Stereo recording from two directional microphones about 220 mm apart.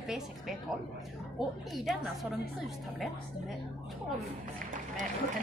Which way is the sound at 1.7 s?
Centre (ahead or behind).